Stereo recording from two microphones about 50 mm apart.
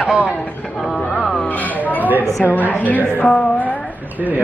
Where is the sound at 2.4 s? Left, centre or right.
Left.